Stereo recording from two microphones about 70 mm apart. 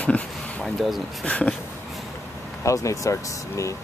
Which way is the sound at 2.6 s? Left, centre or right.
Left.